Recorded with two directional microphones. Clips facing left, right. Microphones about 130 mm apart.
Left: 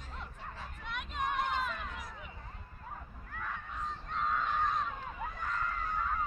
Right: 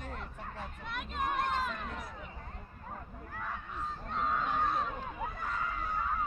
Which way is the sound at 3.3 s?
5° right (ahead or behind).